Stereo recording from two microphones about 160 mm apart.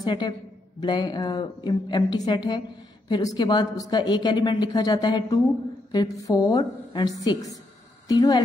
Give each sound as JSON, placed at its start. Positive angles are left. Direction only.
{"t": 0.0, "sound": "a woman's voice", "side_deg": 25}